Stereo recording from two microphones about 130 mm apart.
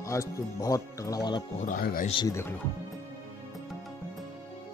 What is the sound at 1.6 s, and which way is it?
Speech, 90° left.